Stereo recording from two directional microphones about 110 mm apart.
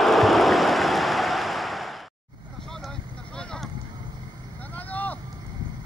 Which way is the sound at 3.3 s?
5° left (ahead or behind).